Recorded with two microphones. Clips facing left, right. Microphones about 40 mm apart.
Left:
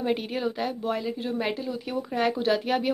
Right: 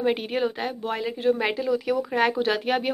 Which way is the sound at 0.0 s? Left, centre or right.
Right.